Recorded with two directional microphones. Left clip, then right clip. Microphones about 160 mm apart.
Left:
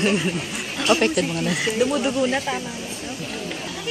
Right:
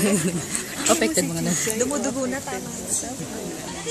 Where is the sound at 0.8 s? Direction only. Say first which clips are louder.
Left 2 dB; 5° left (ahead or behind).